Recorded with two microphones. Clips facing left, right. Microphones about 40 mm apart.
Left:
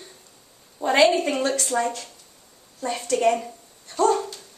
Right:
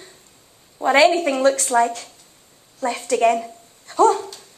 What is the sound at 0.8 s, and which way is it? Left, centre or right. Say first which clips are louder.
A woman's voice: right 3 dB; right.